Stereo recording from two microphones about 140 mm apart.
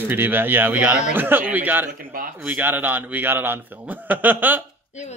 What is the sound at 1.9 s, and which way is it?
Speech, 90° right.